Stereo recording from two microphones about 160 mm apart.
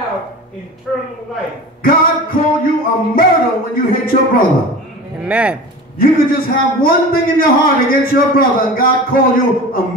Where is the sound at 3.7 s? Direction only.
65° left (ahead or behind).